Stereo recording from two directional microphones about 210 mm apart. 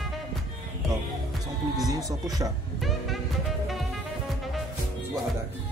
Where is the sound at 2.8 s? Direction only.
Centre (ahead or behind).